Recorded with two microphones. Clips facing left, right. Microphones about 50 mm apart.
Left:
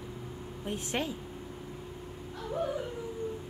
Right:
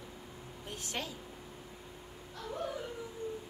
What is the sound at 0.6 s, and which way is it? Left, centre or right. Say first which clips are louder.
Speech: left 7 dB; left.